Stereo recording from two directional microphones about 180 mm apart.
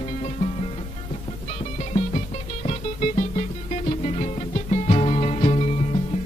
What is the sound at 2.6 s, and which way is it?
Music, 40° left (ahead or behind).